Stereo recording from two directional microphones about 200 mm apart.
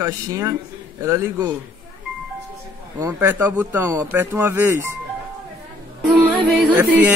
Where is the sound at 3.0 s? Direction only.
15° right (ahead or behind).